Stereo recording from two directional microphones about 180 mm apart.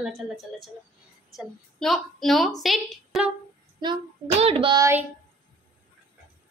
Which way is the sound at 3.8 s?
30° right (ahead or behind).